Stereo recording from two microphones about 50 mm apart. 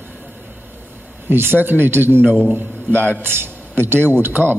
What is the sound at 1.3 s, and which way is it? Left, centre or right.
Speech, right.